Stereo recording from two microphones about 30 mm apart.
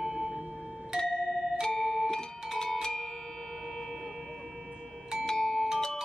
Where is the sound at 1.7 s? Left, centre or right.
Centre.